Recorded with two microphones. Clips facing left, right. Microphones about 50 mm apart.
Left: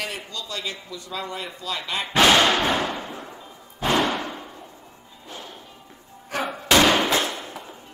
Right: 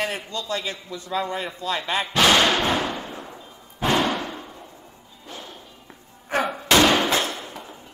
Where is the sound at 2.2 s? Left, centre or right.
Centre.